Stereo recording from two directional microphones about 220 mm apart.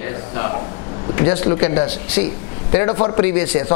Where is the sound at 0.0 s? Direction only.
15° left (ahead or behind).